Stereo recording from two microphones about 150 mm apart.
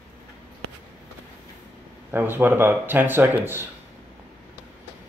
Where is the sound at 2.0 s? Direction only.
15° right (ahead or behind).